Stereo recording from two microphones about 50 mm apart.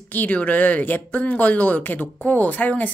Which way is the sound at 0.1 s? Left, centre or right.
Left.